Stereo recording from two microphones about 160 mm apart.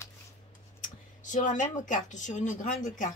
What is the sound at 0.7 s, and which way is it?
Speech, 55° left (ahead or behind).